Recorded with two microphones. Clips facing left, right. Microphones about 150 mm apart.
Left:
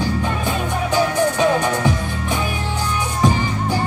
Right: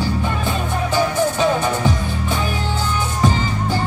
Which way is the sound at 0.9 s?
15° left (ahead or behind).